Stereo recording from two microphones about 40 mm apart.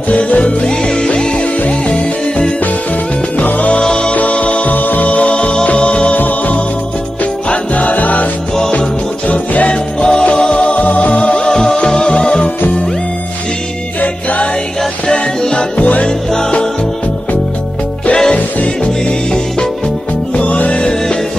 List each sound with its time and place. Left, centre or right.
0.1 s music: left
3.3 s music: left
3.7 s music: left
4.1 s music: left
4.7 s music: left
6.1 s music: left
7.7 s music: left
9.3 s music: left
9.7 s music: left
14.0 s music: left
15.0 s music: left
18.1 s music: centre
20.3 s music: left